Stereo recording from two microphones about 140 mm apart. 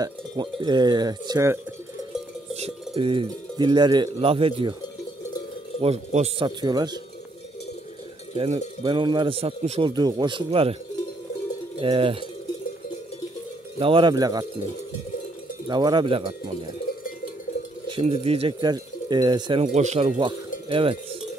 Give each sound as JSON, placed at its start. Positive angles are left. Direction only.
{"t": 0.0, "sound": "speech", "side_deg": -35}
{"t": 2.5, "sound": "speech", "side_deg": -50}
{"t": 5.8, "sound": "speech", "side_deg": -50}
{"t": 6.4, "sound": "speech", "side_deg": -30}
{"t": 8.8, "sound": "speech", "side_deg": -35}
{"t": 11.8, "sound": "speech", "side_deg": -40}
{"t": 13.7, "sound": "speech", "side_deg": -40}
{"t": 15.7, "sound": "speech", "side_deg": -30}
{"t": 18.0, "sound": "speech", "side_deg": -45}
{"t": 18.7, "sound": "speech", "side_deg": -30}
{"t": 19.7, "sound": "speech", "side_deg": -55}
{"t": 20.2, "sound": "speech", "side_deg": -35}